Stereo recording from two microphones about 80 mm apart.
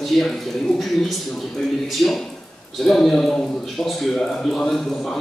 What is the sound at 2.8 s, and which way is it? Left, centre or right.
A man's voice, centre.